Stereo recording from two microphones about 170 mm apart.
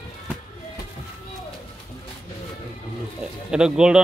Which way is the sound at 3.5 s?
5° right (ahead or behind).